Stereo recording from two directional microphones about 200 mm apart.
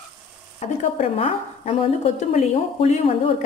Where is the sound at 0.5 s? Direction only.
30° left (ahead or behind).